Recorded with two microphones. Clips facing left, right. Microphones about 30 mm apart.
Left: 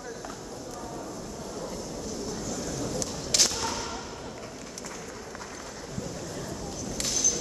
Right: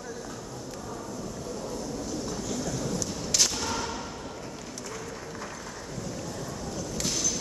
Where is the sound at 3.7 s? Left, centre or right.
Centre.